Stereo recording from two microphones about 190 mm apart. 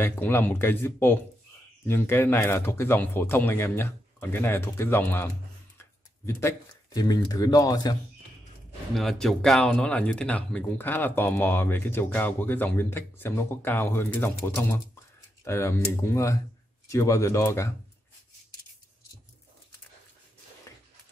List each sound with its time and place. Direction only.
0.0 s speech: 10° left (ahead or behind)
8.9 s speech: centre (ahead or behind)